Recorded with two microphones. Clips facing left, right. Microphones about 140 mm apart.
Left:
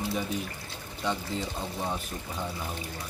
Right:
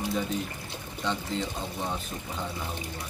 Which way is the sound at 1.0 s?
10° left (ahead or behind).